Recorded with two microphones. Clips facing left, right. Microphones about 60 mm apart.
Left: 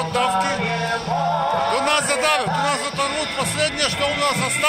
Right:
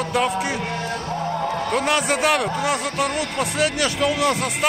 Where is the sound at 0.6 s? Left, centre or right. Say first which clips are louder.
Left 4 dB; left.